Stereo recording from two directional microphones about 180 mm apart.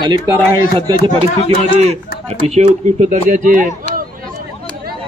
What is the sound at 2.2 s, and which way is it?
Speech, 40° right (ahead or behind).